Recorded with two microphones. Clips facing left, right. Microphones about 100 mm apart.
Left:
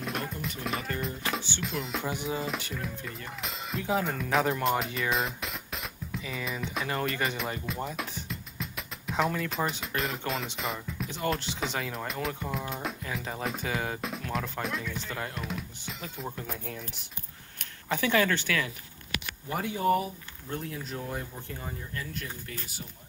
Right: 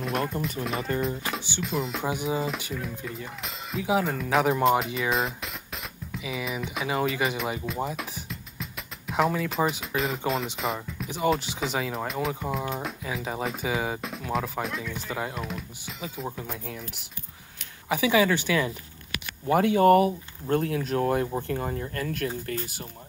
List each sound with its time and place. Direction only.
0.0 s music: centre (ahead or behind)
1.0 s speech: centre (ahead or behind)
2.0 s speech: 15° right (ahead or behind)
3.1 s speech: centre (ahead or behind); by 18.7 s 15° right (ahead or behind)
19.4 s speech: 75° right (ahead or behind)